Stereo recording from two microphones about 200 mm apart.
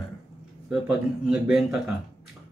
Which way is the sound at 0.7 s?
5° right (ahead or behind).